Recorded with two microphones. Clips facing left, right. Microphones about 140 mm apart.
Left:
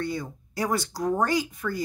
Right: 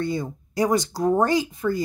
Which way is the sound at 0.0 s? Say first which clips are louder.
Right 4 dB; 25° right (ahead or behind).